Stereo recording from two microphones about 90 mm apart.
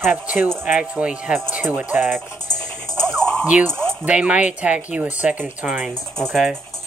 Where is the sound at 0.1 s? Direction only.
20° right (ahead or behind).